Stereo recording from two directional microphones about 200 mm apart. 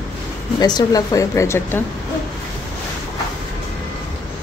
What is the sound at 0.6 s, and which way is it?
Speech, 20° left (ahead or behind).